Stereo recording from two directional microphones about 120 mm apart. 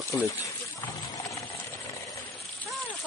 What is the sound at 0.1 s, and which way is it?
Speech, 25° left (ahead or behind).